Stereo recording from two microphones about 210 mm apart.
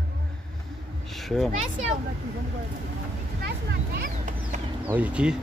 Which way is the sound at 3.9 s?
40° right (ahead or behind).